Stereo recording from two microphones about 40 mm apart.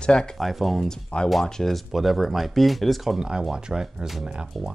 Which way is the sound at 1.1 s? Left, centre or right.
Left.